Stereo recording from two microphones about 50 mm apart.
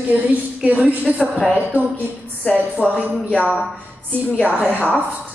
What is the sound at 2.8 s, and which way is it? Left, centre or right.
Speech, left.